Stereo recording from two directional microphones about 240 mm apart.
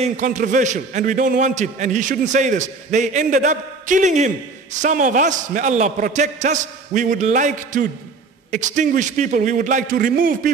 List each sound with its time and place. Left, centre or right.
0.0 s a man's voice: right